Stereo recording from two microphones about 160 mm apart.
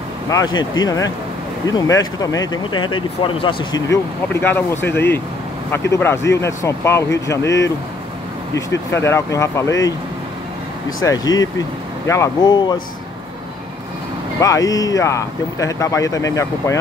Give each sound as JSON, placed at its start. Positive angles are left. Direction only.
{"t": 0.3, "sound": "speech", "side_deg": 25}
{"t": 3.9, "sound": "speech", "side_deg": 15}
{"t": 11.1, "sound": "speech", "side_deg": 25}
{"t": 14.4, "sound": "speech", "side_deg": 20}